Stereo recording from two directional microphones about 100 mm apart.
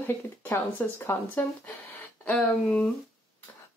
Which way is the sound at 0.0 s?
20° left (ahead or behind).